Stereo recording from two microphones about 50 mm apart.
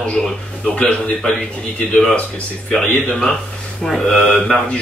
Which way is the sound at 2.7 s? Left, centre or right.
Centre.